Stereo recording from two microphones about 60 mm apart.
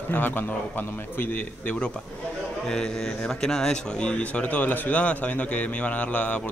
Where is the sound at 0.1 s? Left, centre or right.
Left.